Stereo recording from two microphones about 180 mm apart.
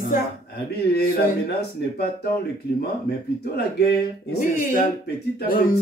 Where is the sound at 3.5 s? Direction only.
60° left (ahead or behind).